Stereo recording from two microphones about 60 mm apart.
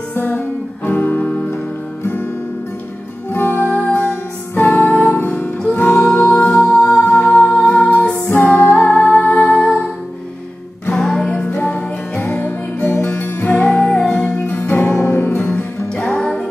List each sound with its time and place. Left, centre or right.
0.1 s music: left
3.3 s music: left
5.9 s music: centre
8.3 s music: left; by 9.8 s centre
11.0 s music: centre; by 13.7 s left
13.7 s music: centre
16.2 s music: centre